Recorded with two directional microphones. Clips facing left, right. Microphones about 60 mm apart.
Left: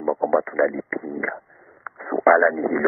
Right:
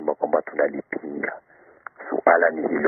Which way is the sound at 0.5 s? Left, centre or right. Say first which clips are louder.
Left 1 dB; left.